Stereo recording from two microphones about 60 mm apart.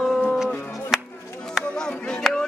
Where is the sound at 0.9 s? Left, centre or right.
Centre.